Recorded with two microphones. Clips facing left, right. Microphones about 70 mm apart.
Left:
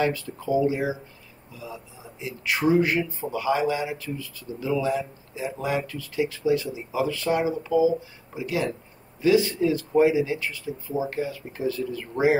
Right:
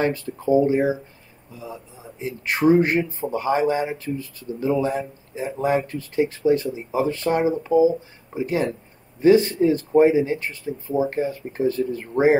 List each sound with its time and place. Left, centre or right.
0.0 s a man's voice: right